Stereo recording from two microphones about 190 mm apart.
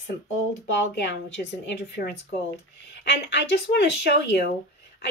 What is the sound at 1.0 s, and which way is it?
Speech, 65° left (ahead or behind).